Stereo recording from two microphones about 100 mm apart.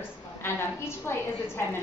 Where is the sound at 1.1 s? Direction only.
25° left (ahead or behind).